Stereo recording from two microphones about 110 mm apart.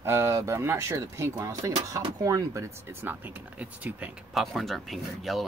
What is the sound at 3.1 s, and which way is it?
Speech, 15° right (ahead or behind).